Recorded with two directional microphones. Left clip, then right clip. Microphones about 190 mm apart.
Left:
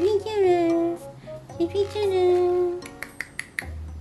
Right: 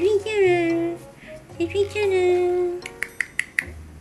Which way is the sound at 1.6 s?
5° left (ahead or behind).